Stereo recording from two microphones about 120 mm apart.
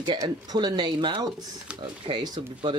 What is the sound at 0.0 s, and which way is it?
Speech, 35° right (ahead or behind).